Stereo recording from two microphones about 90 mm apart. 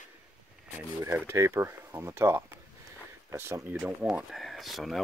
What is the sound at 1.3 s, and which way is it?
Speech, 30° right (ahead or behind).